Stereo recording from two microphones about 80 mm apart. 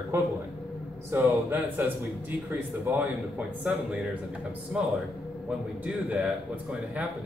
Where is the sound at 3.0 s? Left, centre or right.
Centre.